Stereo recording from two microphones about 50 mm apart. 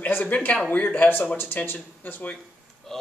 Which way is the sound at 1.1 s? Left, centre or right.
Left.